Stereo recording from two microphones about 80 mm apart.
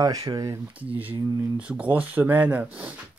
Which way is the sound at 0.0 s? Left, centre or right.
Right.